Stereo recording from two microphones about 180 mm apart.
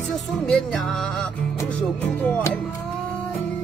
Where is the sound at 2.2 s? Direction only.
5° left (ahead or behind).